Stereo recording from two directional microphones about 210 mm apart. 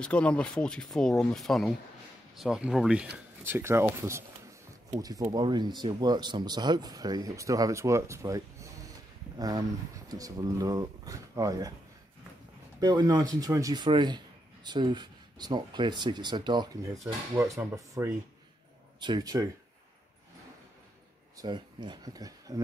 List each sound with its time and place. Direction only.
0.0 s speech: 5° left (ahead or behind); by 11.7 s 15° right (ahead or behind)
12.8 s speech: 20° right (ahead or behind)
21.4 s speech: 20° right (ahead or behind)